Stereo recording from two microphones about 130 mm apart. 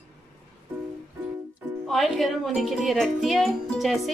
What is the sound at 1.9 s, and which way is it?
Speech, centre (ahead or behind).